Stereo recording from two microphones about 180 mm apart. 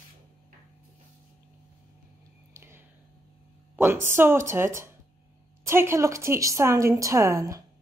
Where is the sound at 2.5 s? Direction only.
15° right (ahead or behind).